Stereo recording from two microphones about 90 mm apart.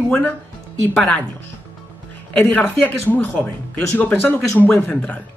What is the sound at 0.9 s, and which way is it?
Speech, 20° left (ahead or behind).